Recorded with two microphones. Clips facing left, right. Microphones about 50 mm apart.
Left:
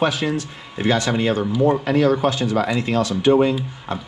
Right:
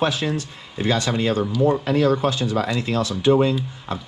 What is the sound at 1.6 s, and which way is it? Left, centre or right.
Speech, left.